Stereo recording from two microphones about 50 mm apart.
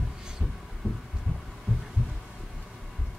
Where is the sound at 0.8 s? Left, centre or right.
Centre.